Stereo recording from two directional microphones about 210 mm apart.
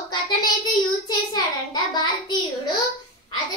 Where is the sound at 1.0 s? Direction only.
20° left (ahead or behind).